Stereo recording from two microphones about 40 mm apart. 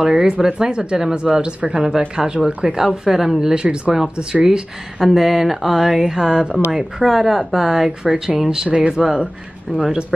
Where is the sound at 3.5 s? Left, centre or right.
Right.